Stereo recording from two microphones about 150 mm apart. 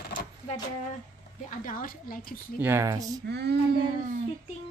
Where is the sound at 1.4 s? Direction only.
65° left (ahead or behind).